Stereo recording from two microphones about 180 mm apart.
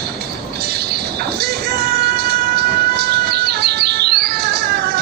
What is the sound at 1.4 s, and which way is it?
Music, 60° right (ahead or behind).